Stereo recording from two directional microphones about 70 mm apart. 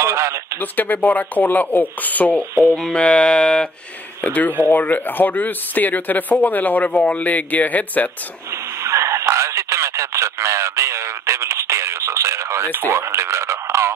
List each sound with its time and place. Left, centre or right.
0.0 s a sound: right
0.6 s speech: left
2.7 s music: centre
4.2 s speech: left
8.8 s a sound: right
12.7 s radio: right